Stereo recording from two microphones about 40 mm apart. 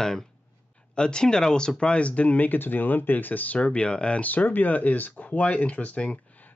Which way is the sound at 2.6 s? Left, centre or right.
Left.